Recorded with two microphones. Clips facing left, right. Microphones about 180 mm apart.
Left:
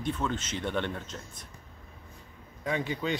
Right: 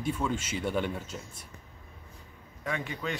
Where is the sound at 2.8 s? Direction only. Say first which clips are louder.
Left 4 dB; 30° left (ahead or behind).